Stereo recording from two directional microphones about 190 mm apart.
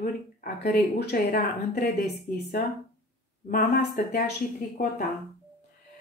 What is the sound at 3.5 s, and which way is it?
Speech, 55° left (ahead or behind).